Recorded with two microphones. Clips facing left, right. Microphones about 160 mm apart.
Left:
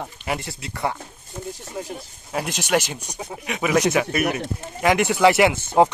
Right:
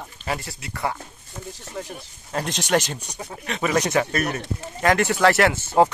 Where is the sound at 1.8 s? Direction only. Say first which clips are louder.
Right 1 dB; 10° left (ahead or behind).